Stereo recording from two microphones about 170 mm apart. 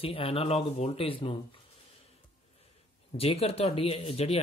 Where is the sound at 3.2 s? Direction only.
35° left (ahead or behind).